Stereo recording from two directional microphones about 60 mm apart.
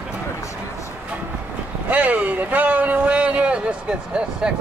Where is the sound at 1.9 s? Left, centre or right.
Right.